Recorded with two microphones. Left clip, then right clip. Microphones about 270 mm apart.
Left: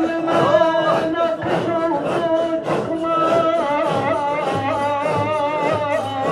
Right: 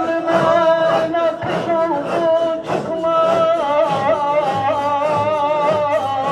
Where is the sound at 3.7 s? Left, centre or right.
Right.